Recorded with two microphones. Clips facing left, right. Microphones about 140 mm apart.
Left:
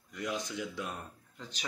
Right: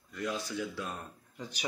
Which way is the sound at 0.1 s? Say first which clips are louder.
Right 1 dB; 20° left (ahead or behind).